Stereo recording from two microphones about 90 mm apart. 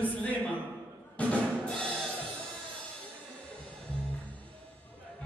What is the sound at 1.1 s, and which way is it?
Music, 10° left (ahead or behind).